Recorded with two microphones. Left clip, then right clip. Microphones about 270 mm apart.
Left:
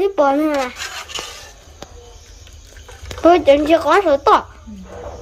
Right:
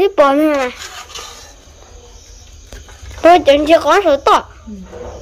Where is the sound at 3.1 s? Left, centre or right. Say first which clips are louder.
Right 3 dB; centre.